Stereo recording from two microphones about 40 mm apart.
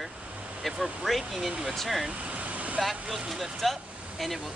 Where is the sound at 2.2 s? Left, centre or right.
Right.